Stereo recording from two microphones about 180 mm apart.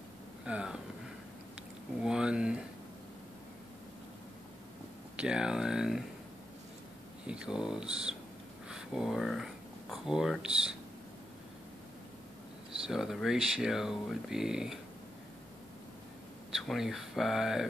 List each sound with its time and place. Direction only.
0.5 s speech: 5° right (ahead or behind)
2.0 s a sound: 5° right (ahead or behind)
5.1 s a sound: 5° right (ahead or behind)
7.2 s speech: 5° right (ahead or behind)
12.8 s speech: centre (ahead or behind)
16.5 s speech: centre (ahead or behind)